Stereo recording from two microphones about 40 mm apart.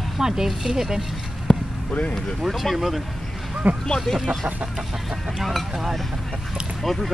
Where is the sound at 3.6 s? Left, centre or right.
Right.